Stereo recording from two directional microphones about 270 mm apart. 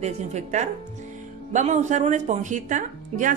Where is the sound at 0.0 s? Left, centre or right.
Right.